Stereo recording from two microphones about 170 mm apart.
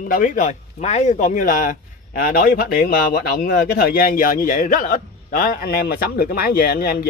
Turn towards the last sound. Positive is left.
turn(degrees=65)  # may be behind; listen again after turning